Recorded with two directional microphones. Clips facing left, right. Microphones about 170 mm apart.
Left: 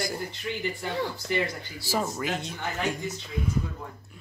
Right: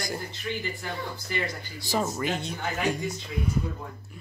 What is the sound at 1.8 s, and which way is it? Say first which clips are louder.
Speech: right 1 dB; centre (ahead or behind).